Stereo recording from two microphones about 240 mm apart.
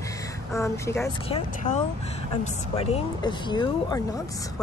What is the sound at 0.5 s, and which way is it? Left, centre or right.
Speech, centre.